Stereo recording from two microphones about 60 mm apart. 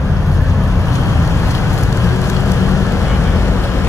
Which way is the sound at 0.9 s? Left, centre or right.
Left.